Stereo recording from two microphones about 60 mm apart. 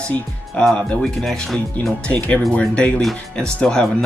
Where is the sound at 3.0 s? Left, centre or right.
Centre.